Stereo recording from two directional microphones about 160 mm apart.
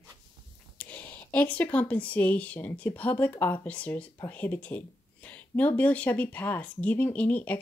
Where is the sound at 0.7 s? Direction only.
10° left (ahead or behind).